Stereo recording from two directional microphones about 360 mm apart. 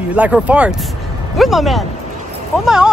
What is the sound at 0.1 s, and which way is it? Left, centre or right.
Speech, centre.